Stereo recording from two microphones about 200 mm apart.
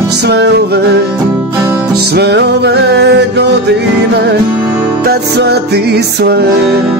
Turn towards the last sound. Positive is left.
turn(degrees=-55)  # may be behind; listen again after turning